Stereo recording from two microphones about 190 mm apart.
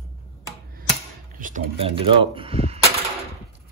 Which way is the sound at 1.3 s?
45° right (ahead or behind).